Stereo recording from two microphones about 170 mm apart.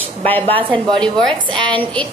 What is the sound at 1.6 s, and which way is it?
Speech, 10° left (ahead or behind).